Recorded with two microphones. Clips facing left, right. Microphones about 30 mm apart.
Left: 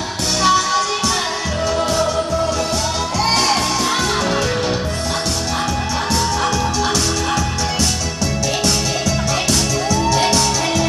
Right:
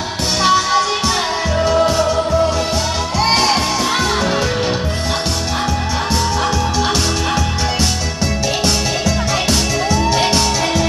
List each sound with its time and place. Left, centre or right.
0.4 s music: centre
3.2 s music: centre
10.1 s music: centre